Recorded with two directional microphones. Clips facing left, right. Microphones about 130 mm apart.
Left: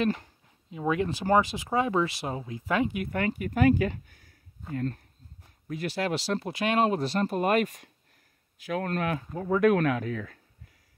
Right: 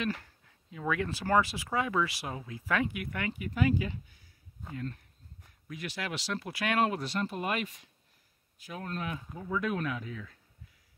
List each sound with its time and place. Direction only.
0.1 s speech: 20° left (ahead or behind); by 4.3 s 55° left (ahead or behind)
4.7 s speech: 40° left (ahead or behind)
8.5 s speech: 90° left; by 10.4 s 65° left (ahead or behind)